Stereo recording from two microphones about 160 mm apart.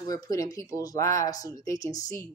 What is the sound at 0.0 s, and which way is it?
Speech, 20° left (ahead or behind).